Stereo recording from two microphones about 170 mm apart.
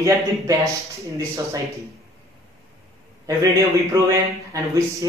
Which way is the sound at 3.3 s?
20° right (ahead or behind).